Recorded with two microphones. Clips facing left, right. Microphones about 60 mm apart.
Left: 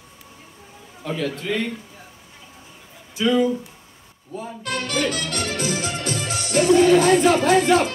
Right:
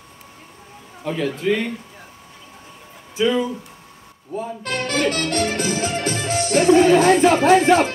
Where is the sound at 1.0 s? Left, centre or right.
Centre.